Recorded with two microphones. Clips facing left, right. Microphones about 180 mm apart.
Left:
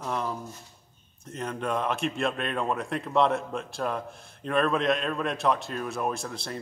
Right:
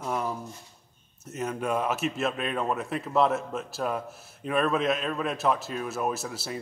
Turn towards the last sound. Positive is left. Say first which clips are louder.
# right 1 dB
turn(degrees=-5)  # may be behind; listen again after turning